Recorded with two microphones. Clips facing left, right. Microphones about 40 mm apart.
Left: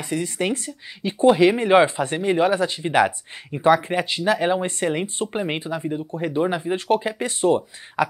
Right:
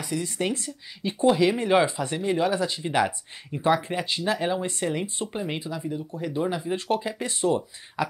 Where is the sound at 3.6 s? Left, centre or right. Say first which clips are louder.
Left 6 dB; left.